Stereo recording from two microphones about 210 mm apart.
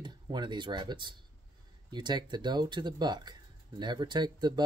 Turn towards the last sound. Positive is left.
turn(degrees=-20)  # may be behind; listen again after turning